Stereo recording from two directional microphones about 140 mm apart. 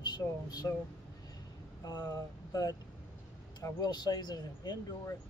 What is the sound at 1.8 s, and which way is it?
Speech, 25° left (ahead or behind).